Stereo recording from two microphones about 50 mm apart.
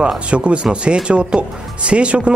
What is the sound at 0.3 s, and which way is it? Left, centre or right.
Speech, centre.